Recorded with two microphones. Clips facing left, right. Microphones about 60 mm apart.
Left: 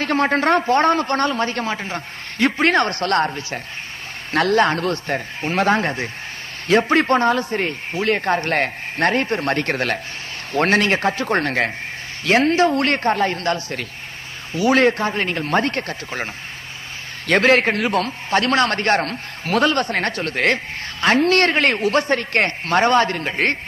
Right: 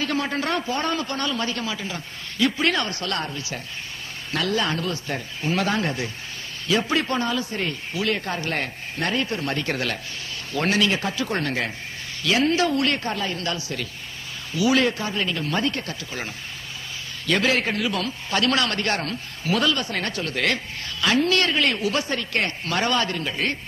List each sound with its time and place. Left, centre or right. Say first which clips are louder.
0.0 s a man's voice: left 7 dB; left
3.3 s a man's voice: left 5 dB; left
4.3 s a man's voice: left 8 dB; left
17.3 s a man's voice: left 7 dB; left